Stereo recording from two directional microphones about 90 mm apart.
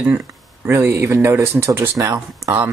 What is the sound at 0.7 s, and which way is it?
Speech, 30° right (ahead or behind).